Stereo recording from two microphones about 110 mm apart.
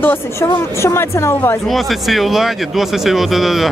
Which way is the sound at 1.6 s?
Centre (ahead or behind).